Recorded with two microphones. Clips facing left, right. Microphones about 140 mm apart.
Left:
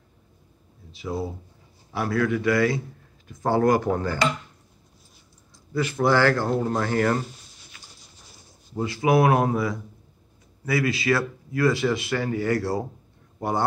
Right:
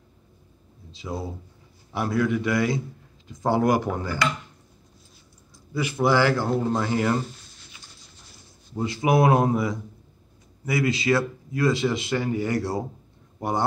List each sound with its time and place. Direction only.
0.9 s a man's voice: 20° right (ahead or behind)
5.7 s a man's voice: 10° right (ahead or behind)
8.8 s speech: 20° right (ahead or behind)